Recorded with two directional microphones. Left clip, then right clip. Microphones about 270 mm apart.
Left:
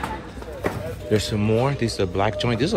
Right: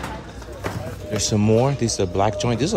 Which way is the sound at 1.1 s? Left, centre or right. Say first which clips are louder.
Right 2 dB; centre.